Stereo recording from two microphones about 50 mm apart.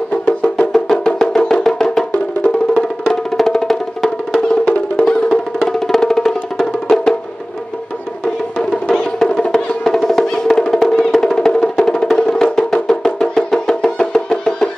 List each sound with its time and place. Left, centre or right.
0.1 s music: left
0.8 s music: centre
8.5 s music: centre